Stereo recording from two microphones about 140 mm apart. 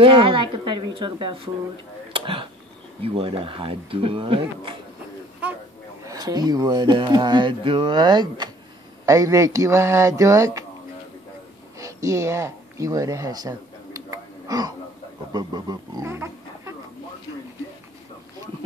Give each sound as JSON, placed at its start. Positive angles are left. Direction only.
{"t": 0.0, "sound": "speech", "side_deg": -40}
{"t": 2.1, "sound": "a sound", "side_deg": -40}
{"t": 3.0, "sound": "speech", "side_deg": -40}
{"t": 6.0, "sound": "speech", "side_deg": -30}
{"t": 11.8, "sound": "a sound", "side_deg": -20}
{"t": 15.3, "sound": "speech", "side_deg": -25}